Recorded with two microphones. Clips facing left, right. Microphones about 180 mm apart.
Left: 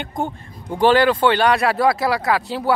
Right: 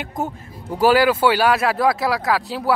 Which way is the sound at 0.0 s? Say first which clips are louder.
Left 1 dB; 5° right (ahead or behind).